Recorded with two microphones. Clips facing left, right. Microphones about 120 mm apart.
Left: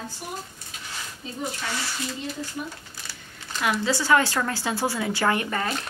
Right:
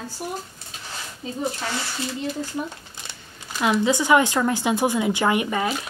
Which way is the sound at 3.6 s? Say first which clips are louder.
Right 5 dB; 20° right (ahead or behind).